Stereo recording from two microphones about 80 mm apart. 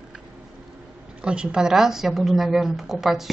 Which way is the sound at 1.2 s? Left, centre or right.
Centre.